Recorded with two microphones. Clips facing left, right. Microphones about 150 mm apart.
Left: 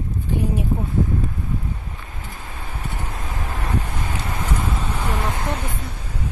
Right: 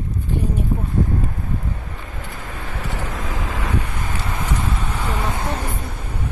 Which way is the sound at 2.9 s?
90° right.